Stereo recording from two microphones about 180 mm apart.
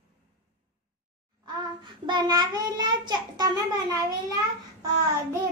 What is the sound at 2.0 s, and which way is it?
A child's voice, 25° right (ahead or behind).